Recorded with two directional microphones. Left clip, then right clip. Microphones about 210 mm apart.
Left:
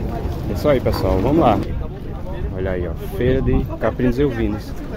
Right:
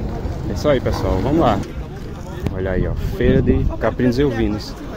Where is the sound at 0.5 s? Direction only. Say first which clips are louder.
Even; 5° left (ahead or behind).